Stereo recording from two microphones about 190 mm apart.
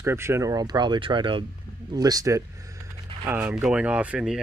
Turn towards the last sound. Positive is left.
turn(degrees=-5)  # may be behind; listen again after turning